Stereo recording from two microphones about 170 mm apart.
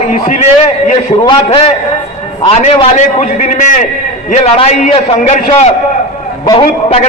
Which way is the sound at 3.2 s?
45° left (ahead or behind).